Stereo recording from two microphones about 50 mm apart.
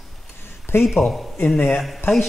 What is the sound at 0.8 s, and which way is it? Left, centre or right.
Speech, centre.